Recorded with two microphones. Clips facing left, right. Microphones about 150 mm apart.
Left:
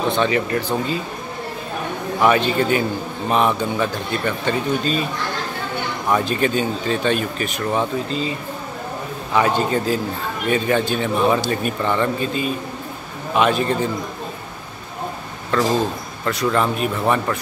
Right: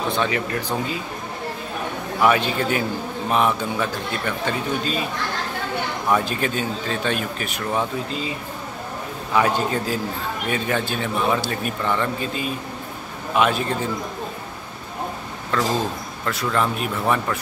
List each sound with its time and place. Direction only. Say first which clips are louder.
0.2 s speech: left 5 dB; centre (ahead or behind)
2.1 s speech: left 2 dB; 5° right (ahead or behind)
6.0 s speech: left 3 dB; centre (ahead or behind)
9.3 s speech: left 2 dB; centre (ahead or behind)
15.5 s speech: left 4 dB; centre (ahead or behind)